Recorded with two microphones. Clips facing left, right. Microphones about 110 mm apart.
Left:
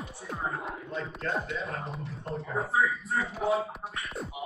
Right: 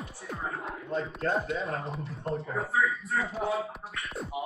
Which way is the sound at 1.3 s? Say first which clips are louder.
Right 3 dB; 30° right (ahead or behind).